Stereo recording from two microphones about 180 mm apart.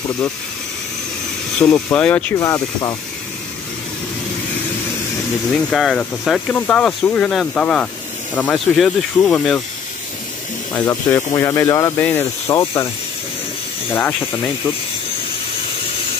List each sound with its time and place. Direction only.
1.6 s speech: 10° left (ahead or behind)
2.3 s speech: 20° left (ahead or behind)
5.5 s speech: centre (ahead or behind)
10.7 s speech: 15° left (ahead or behind)